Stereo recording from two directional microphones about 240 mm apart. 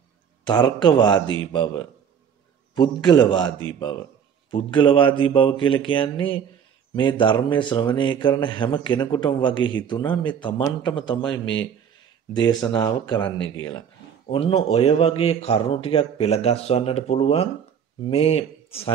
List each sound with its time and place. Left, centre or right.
0.5 s a man's voice: centre
12.4 s a man's voice: centre